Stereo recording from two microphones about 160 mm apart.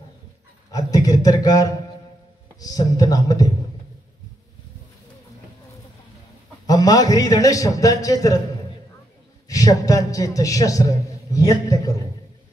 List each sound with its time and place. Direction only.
0.7 s a sound: 20° left (ahead or behind)
2.6 s a man's voice: 25° left (ahead or behind)
6.7 s a man's voice: 25° left (ahead or behind)
9.5 s a man's voice: 20° left (ahead or behind)